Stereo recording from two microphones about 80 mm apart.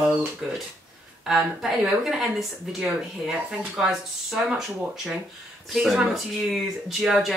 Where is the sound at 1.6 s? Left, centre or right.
Centre.